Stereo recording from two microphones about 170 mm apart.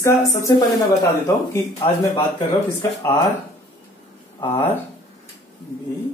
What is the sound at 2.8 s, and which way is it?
Speech, 15° left (ahead or behind).